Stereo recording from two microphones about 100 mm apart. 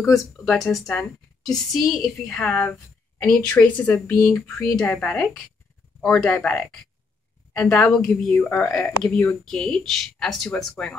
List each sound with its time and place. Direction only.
0.5 s a woman's voice: centre (ahead or behind)
4.2 s speech: 30° left (ahead or behind)
4.8 s a woman's voice: 10° left (ahead or behind)